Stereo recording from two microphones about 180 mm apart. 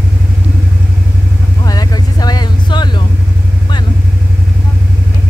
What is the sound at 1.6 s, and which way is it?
Vehicle, 20° left (ahead or behind).